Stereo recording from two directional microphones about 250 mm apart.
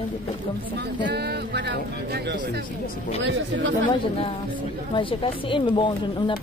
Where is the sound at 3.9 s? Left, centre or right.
Left.